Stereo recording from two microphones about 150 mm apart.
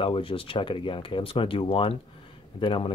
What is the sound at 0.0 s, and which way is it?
Speech, 35° left (ahead or behind).